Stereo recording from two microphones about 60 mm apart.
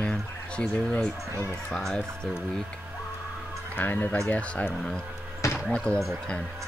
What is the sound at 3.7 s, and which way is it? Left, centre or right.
Speech, left.